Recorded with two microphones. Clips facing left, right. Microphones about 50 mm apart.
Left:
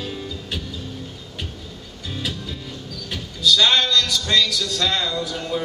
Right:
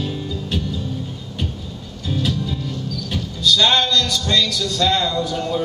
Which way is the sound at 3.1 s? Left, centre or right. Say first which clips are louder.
Even; centre.